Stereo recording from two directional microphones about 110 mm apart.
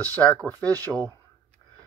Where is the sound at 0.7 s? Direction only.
30° right (ahead or behind).